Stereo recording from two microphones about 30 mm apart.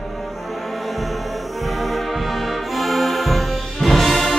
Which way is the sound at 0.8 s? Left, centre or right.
Centre.